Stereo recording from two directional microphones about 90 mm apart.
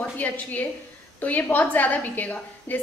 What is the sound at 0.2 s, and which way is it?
A woman's voice, 15° left (ahead or behind).